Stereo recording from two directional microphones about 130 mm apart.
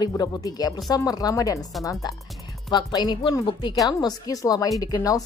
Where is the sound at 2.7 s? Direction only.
35° left (ahead or behind).